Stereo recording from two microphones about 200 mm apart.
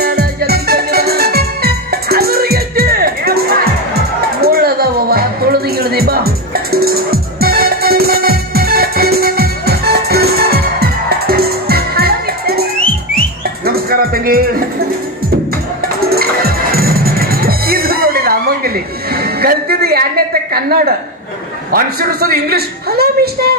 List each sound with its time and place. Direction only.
0.0 s music: 50° right (ahead or behind)
13.7 s music: 50° right (ahead or behind)
16.0 s music: 50° right (ahead or behind)
21.7 s a woman's voice: 50° right (ahead or behind)